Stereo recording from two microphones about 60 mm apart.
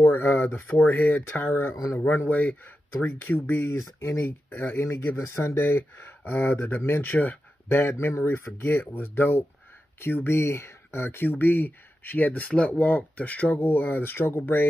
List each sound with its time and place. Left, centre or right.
0.0 s speech: left
2.2 s speech: left
4.2 s speech: left
5.2 s speech: left